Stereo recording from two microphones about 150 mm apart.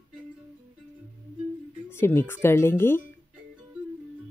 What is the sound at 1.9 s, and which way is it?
A woman's voice, 15° left (ahead or behind).